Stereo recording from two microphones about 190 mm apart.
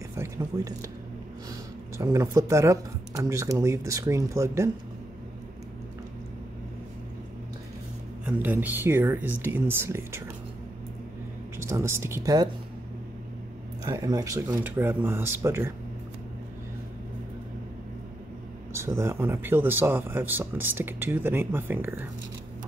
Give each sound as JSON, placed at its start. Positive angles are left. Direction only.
{"t": 0.1, "sound": "a sound", "side_deg": -15}
{"t": 2.0, "sound": "speech", "side_deg": -15}
{"t": 8.3, "sound": "speech", "side_deg": -10}
{"t": 11.5, "sound": "speech", "side_deg": -15}
{"t": 13.8, "sound": "speech", "side_deg": -20}
{"t": 18.7, "sound": "speech", "side_deg": -15}